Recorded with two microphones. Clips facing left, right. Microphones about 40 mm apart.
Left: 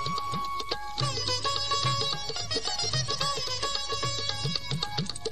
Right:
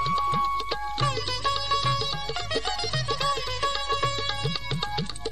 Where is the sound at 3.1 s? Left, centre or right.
Right.